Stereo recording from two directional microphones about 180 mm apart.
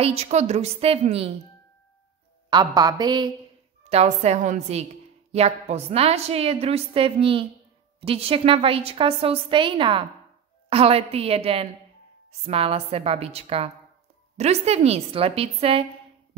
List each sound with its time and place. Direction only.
0.0 s a woman's voice: 35° right (ahead or behind)
2.5 s a woman's voice: 25° right (ahead or behind)
3.8 s a woman's voice: 35° right (ahead or behind)